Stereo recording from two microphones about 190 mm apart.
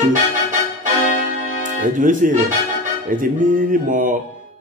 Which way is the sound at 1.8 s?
45° right (ahead or behind).